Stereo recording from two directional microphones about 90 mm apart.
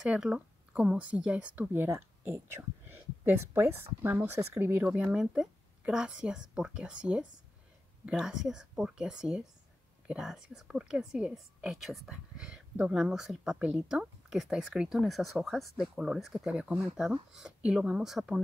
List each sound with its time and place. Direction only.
0.0 s speech: 10° right (ahead or behind); by 4.8 s 25° right (ahead or behind)
4.8 s a woman's voice: 10° right (ahead or behind)